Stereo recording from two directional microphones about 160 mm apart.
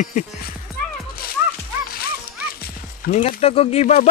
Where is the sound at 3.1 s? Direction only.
45° left (ahead or behind).